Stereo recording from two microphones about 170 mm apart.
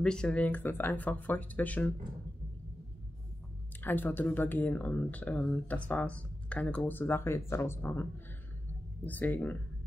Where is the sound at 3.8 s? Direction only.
10° left (ahead or behind).